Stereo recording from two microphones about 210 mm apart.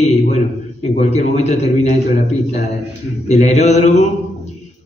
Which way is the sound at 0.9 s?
30° left (ahead or behind).